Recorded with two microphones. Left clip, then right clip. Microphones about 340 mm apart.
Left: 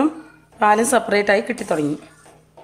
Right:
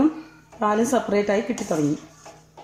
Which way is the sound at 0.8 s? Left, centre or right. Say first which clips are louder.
Left 4 dB; left.